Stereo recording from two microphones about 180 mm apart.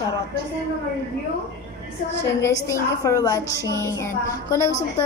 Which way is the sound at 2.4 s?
15° left (ahead or behind).